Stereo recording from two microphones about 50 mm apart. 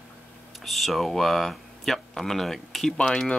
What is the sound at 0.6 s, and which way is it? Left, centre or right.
Speech, centre.